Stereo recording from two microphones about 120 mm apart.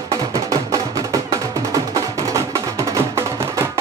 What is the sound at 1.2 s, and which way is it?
Music, 30° right (ahead or behind).